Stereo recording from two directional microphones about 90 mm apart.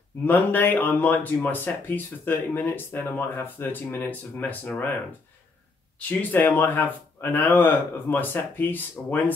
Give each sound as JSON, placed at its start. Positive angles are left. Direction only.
{"t": 0.2, "sound": "speech", "side_deg": 20}
{"t": 5.9, "sound": "speech", "side_deg": 20}